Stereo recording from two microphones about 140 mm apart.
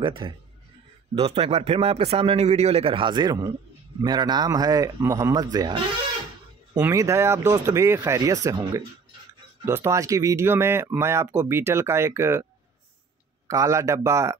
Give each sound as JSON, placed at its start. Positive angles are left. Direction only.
{"t": 0.0, "sound": "a man's voice", "side_deg": -35}
{"t": 6.8, "sound": "speech", "side_deg": -20}
{"t": 13.5, "sound": "speech", "side_deg": -20}